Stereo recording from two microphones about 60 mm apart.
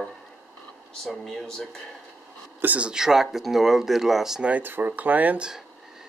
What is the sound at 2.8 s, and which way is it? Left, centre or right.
Speech, centre.